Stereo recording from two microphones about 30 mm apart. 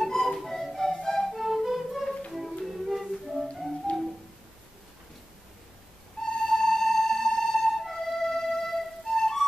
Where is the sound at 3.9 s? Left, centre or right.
Left.